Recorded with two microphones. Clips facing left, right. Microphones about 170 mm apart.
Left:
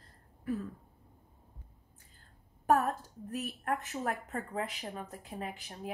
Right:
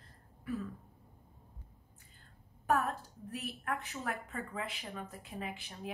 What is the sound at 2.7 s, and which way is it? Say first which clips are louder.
A woman's voice: left 4 dB; 40° left (ahead or behind).